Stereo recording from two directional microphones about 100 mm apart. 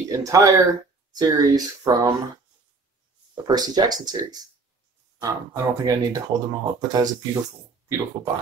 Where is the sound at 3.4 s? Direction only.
45° right (ahead or behind).